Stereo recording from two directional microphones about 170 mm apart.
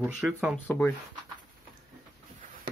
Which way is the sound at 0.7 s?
10° left (ahead or behind).